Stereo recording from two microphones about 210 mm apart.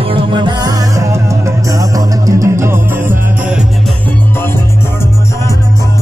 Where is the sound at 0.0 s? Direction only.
25° right (ahead or behind); by 3.6 s 10° right (ahead or behind).